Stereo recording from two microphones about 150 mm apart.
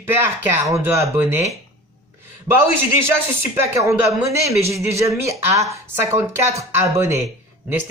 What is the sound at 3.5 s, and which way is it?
Speech, 20° right (ahead or behind).